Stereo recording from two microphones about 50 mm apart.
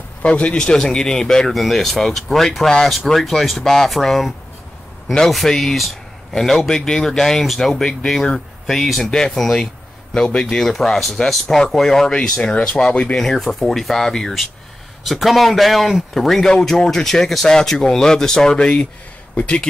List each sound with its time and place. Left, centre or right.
0.2 s a man's voice: left; by 4.3 s centre
5.5 s a man's voice: centre
7.7 s a man's voice: centre
9.1 s a man's voice: centre
13.1 s a man's voice: centre; by 19.6 s left